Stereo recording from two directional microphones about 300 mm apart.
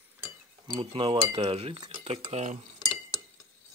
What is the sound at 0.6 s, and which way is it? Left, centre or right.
Cutlery, centre.